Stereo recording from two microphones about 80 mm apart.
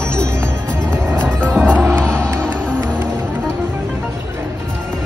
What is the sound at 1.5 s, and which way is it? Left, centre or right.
Music, centre.